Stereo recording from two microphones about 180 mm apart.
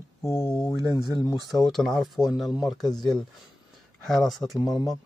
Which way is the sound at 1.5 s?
Centre (ahead or behind).